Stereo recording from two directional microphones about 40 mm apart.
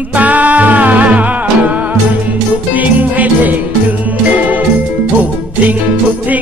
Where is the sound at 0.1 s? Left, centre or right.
Right.